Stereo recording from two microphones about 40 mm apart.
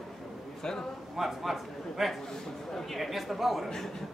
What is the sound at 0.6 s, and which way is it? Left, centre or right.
Speech, centre.